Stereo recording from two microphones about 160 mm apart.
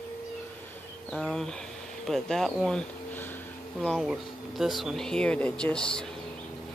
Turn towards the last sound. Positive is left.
turn(degrees=5)  # may be behind; listen again after turning